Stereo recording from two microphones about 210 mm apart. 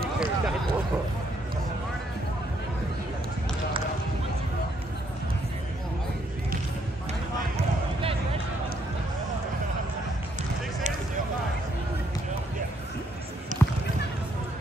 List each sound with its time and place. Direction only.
0.0 s a sound: centre (ahead or behind)
7.5 s basketball bounce: 25° right (ahead or behind)
13.5 s basketball bounce: 35° right (ahead or behind)